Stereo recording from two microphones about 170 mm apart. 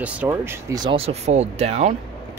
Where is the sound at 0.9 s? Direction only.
40° right (ahead or behind).